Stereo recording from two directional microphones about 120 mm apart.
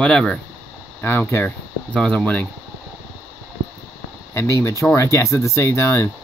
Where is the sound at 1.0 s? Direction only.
20° left (ahead or behind).